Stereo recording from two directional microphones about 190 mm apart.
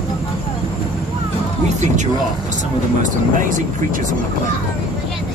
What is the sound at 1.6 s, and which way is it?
Speech, 40° right (ahead or behind).